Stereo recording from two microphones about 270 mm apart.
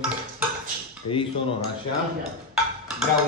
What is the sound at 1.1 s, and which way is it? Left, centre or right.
Cutlery, left.